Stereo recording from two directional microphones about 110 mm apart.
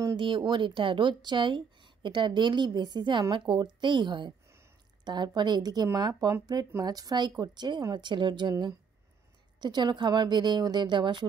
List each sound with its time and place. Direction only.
0.0 s speech: 45° right (ahead or behind)